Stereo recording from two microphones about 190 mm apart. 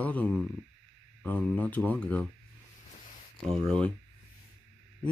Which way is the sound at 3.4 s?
30° right (ahead or behind).